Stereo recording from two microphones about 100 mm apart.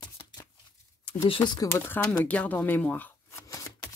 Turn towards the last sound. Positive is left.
turn(degrees=15)  # may be behind; listen again after turning